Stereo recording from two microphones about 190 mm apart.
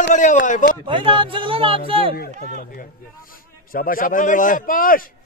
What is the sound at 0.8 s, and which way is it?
Speech, 25° right (ahead or behind).